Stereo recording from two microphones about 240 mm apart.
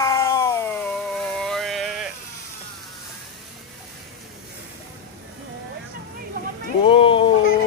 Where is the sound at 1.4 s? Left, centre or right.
Centre.